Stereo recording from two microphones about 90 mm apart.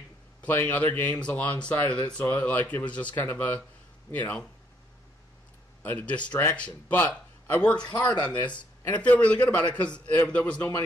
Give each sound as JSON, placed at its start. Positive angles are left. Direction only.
{"t": 0.4, "sound": "a man's voice", "side_deg": 20}
{"t": 5.8, "sound": "a man's voice", "side_deg": 15}
{"t": 7.7, "sound": "speech", "side_deg": 55}
{"t": 8.2, "sound": "a man's voice", "side_deg": 15}